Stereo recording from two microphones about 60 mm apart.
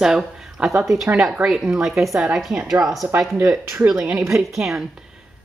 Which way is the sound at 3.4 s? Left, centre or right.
Right.